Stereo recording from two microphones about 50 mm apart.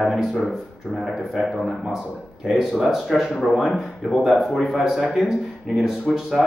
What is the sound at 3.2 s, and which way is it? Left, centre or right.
Speech, centre.